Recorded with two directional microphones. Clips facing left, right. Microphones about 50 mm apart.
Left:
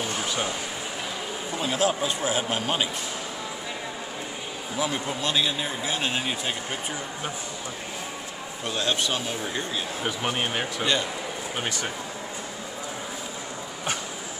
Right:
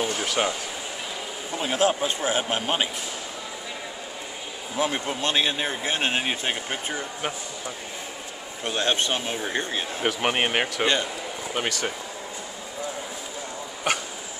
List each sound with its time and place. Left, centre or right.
1.6 s speech: right
4.7 s speech: right
8.6 s speech: right
10.0 s speech: right